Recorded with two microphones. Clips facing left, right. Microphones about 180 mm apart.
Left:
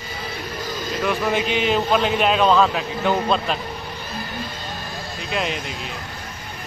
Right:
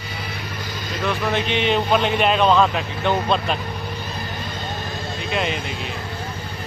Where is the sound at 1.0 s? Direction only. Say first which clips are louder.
Left 1 dB; 5° left (ahead or behind).